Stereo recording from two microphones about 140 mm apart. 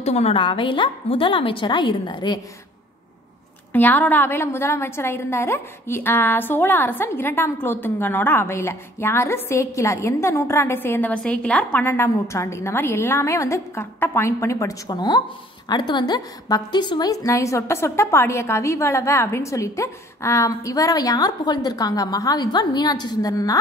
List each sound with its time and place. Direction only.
0.0 s a woman's voice: 50° left (ahead or behind); by 2.4 s 30° left (ahead or behind)
3.7 s a woman's voice: 10° left (ahead or behind)